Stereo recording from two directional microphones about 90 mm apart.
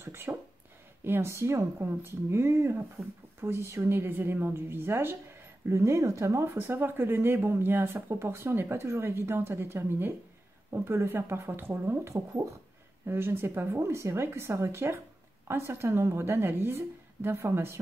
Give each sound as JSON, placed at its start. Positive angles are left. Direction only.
{"t": 0.0, "sound": "speech", "side_deg": -25}